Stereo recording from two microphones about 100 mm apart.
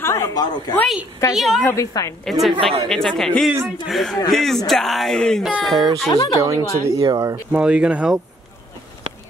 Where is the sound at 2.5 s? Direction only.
65° right (ahead or behind).